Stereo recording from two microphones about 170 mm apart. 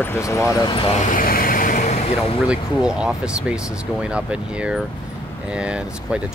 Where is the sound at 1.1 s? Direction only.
55° left (ahead or behind).